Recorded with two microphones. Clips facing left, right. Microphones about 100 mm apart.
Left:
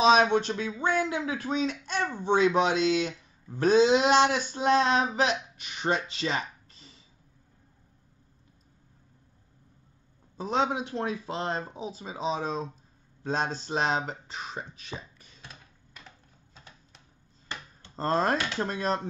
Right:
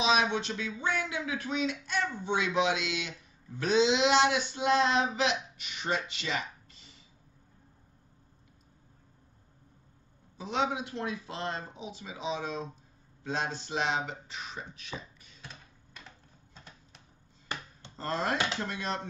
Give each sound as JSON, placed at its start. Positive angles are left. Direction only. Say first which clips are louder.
{"t": 0.0, "sound": "speech", "louder": "left 7 dB", "side_deg": 45}
{"t": 10.3, "sound": "speech", "louder": "left 4 dB", "side_deg": 40}
{"t": 15.4, "sound": "a sound", "louder": "right 1 dB", "side_deg": 0}
{"t": 17.9, "sound": "speech", "louder": "left 5 dB", "side_deg": 40}